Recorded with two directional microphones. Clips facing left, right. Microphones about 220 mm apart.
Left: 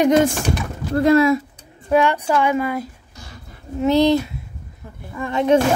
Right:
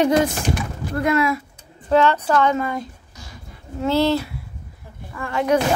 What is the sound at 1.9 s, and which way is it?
Speech, 15° left (ahead or behind).